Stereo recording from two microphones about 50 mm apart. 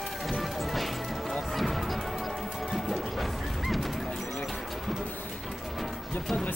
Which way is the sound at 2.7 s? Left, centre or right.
Centre.